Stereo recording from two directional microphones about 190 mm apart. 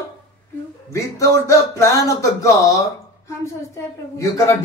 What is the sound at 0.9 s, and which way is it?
A man's voice, 15° left (ahead or behind).